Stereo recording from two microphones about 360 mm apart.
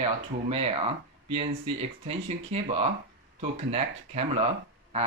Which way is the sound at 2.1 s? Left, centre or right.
Centre.